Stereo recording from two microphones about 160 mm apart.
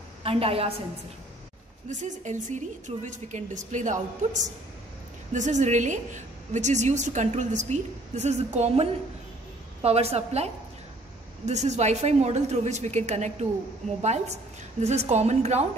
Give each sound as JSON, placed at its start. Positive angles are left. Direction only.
{"t": 0.2, "sound": "a woman's voice", "side_deg": -35}
{"t": 1.9, "sound": "a woman's voice", "side_deg": -50}